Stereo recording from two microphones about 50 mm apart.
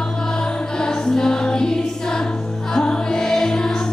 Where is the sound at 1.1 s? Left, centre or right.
Centre.